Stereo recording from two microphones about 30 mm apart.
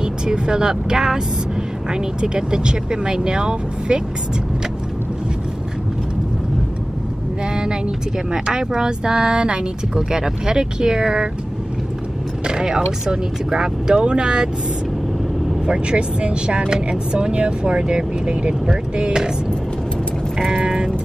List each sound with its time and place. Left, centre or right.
0.0 s speech: right
8.3 s speech: right
12.4 s speech: right
15.6 s speech: right
20.5 s vehicle: right